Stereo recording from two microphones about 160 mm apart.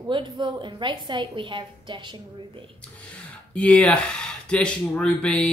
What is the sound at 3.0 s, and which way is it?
Speech, 5° left (ahead or behind).